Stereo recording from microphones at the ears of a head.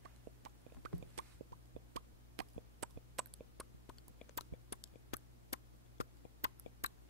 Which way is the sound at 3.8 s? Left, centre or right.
Left.